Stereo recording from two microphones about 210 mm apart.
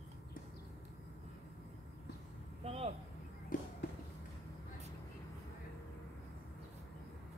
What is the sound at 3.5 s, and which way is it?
Walk, 40° left (ahead or behind).